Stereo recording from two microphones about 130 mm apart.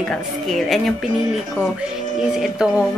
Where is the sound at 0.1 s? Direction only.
Centre (ahead or behind).